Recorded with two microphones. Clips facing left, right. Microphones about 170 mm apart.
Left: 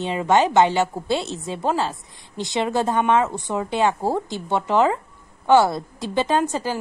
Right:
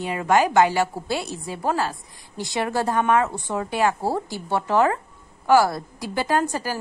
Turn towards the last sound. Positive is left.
turn(degrees=20)  # may be behind; listen again after turning